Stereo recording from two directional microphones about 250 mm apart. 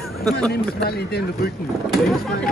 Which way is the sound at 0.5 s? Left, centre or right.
Left.